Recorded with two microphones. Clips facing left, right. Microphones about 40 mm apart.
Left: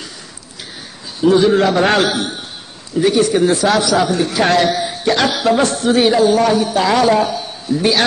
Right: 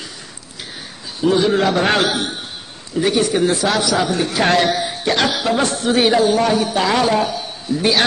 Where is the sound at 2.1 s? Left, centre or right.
Centre.